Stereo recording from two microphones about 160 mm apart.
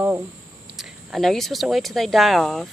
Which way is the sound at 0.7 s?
Centre (ahead or behind).